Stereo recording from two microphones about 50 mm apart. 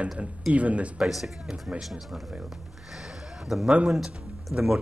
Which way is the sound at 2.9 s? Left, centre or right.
Centre.